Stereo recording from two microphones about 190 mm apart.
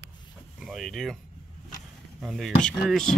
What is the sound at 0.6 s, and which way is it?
Speech, centre (ahead or behind).